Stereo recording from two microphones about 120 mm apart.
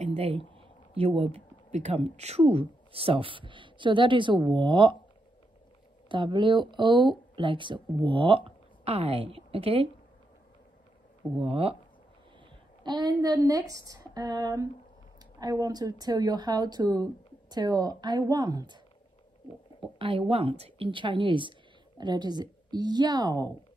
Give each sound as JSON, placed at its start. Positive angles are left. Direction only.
{"t": 0.1, "sound": "speech", "side_deg": -55}
{"t": 6.0, "sound": "speech", "side_deg": -45}
{"t": 11.4, "sound": "speech", "side_deg": -50}
{"t": 12.8, "sound": "speech", "side_deg": -40}
{"t": 20.0, "sound": "speech", "side_deg": -50}